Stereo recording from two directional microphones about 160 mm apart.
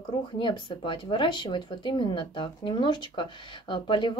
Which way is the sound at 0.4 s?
30° left (ahead or behind).